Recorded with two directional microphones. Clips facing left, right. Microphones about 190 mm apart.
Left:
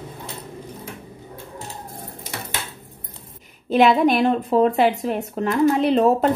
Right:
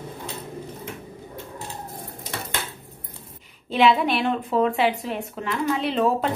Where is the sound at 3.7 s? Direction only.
45° left (ahead or behind).